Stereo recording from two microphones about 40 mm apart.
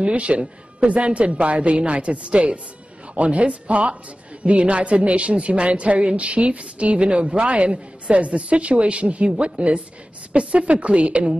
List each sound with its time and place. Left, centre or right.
0.0 s a woman's voice: right